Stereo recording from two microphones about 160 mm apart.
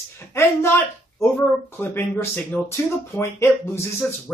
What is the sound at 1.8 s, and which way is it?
Speech, 15° left (ahead or behind).